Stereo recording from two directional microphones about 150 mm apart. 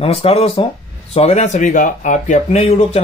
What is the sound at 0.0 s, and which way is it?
Speech, 40° left (ahead or behind).